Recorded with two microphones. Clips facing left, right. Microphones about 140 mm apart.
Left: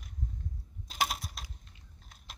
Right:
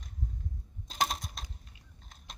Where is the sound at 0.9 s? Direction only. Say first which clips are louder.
Right 1 dB; 5° left (ahead or behind).